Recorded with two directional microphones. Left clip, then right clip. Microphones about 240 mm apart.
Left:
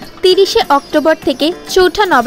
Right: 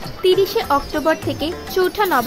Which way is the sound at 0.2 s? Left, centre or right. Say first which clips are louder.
Left 7 dB; centre.